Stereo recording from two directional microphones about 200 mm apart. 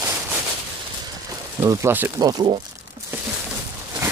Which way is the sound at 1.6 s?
15° right (ahead or behind).